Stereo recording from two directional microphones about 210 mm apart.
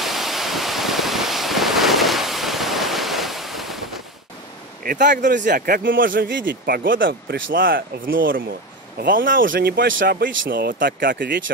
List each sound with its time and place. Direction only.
0.0 s waves: centre (ahead or behind)
4.8 s a man's voice: 40° right (ahead or behind)